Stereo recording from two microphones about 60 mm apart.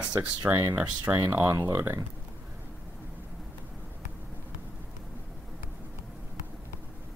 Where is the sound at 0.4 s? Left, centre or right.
Right.